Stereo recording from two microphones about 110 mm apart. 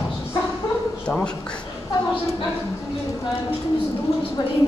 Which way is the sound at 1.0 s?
10° left (ahead or behind).